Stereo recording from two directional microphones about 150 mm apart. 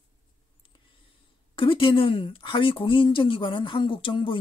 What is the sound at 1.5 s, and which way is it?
A woman's voice, 35° left (ahead or behind).